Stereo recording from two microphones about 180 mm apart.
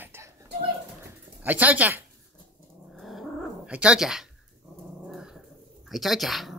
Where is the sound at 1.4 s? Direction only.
10° right (ahead or behind).